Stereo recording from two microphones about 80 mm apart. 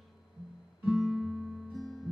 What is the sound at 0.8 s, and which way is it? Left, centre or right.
Guitar, centre.